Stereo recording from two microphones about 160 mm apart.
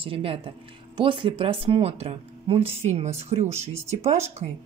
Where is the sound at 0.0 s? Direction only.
35° right (ahead or behind).